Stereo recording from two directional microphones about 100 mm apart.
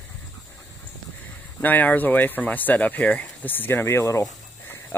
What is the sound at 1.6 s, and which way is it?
Speech, 15° left (ahead or behind).